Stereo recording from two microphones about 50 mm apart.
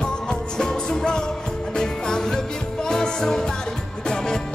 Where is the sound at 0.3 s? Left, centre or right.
Centre.